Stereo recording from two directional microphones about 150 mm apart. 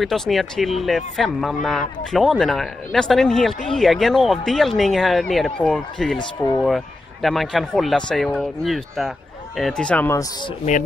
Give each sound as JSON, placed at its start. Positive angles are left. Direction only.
{"t": 0.0, "sound": "speech", "side_deg": 0}
{"t": 6.1, "sound": "speech", "side_deg": 30}
{"t": 6.6, "sound": "speech", "side_deg": 0}